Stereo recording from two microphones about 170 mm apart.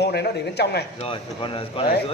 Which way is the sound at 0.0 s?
75° left (ahead or behind).